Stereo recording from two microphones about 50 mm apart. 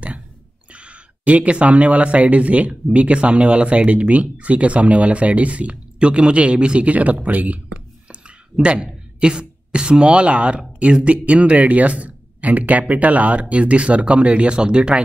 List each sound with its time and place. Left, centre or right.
0.7 s speech: right
8.1 s a sound: right
9.2 s speech: centre